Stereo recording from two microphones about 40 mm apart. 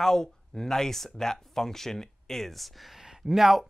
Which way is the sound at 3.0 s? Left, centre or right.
Centre.